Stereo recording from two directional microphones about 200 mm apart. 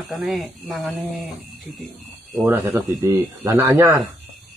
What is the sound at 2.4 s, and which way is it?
Speech, 10° right (ahead or behind).